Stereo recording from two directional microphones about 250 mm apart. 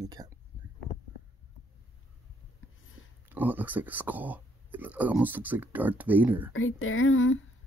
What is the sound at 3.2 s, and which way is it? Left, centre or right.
Speech, centre.